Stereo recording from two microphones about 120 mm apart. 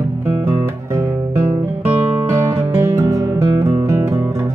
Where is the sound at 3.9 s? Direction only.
25° right (ahead or behind).